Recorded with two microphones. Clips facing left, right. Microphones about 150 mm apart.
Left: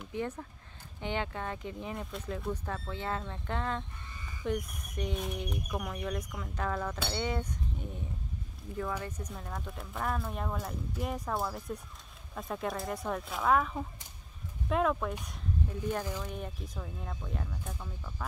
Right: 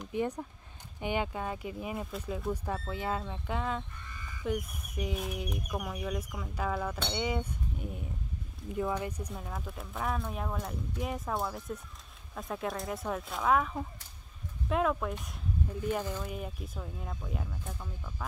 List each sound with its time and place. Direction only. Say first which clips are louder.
0.1 s speech: right 3 dB; 15° right (ahead or behind)
8.7 s speech: right 3 dB; 15° right (ahead or behind)